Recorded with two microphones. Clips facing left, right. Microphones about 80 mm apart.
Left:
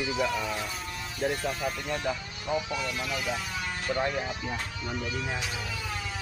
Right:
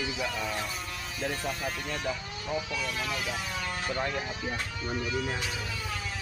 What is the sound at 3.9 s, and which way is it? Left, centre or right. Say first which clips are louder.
Speech: left 4 dB; centre.